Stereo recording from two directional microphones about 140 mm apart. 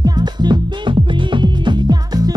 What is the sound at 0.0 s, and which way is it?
Music, 30° right (ahead or behind).